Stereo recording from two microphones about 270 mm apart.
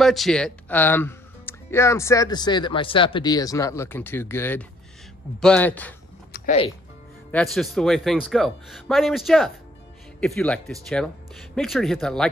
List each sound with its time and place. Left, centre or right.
0.0 s speech: centre
6.3 s music: left
7.2 s speech: centre